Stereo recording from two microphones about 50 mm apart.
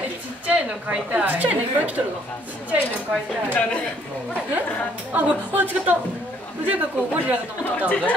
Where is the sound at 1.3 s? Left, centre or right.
Right.